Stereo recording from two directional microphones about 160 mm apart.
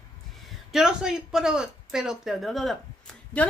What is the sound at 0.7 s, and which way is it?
Speech, 5° right (ahead or behind).